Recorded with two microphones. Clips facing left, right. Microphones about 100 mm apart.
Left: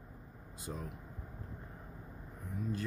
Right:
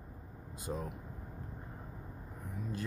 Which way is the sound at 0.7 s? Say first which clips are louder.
Right 5 dB; 40° right (ahead or behind).